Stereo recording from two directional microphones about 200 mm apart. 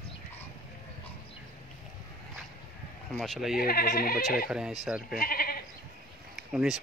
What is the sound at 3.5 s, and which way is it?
Speech, 50° left (ahead or behind).